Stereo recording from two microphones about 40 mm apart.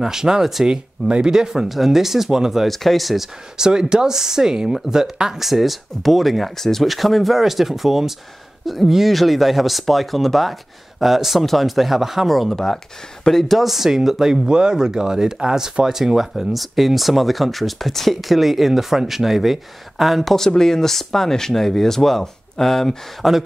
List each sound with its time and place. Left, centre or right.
0.0 s speech: centre
2.7 s speech: centre
3.5 s speech: centre
12.5 s speech: centre
20.3 s speech: centre
23.2 s speech: centre